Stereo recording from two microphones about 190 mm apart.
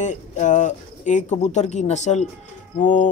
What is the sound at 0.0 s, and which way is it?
Speech, 40° left (ahead or behind).